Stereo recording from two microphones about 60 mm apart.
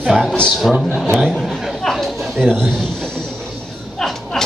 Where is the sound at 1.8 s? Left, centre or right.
Centre.